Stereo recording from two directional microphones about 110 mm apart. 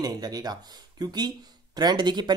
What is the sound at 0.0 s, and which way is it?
Speech, 35° right (ahead or behind).